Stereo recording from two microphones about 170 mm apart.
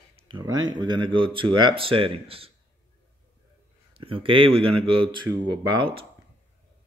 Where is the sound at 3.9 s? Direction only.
30° right (ahead or behind).